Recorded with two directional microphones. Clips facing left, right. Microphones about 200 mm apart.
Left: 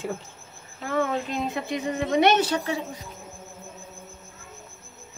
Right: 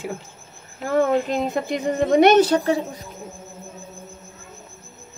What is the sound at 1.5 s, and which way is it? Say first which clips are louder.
A woman's voice: right 6 dB; 40° right (ahead or behind).